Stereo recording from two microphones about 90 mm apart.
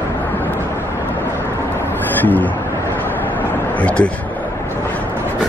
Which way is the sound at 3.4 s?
20° left (ahead or behind).